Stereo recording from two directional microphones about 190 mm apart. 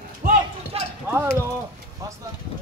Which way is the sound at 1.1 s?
10° right (ahead or behind).